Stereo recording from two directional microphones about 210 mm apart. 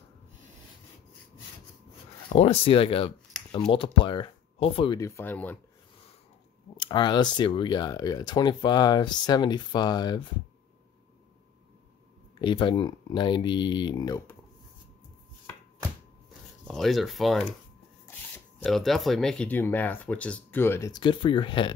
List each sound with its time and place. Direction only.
2.3 s speech: 25° left (ahead or behind); by 5.6 s 10° left (ahead or behind)
6.8 s speech: 20° left (ahead or behind)
12.4 s speech: 20° left (ahead or behind)
16.6 s speech: centre (ahead or behind)
18.6 s speech: centre (ahead or behind); by 21.7 s 25° left (ahead or behind)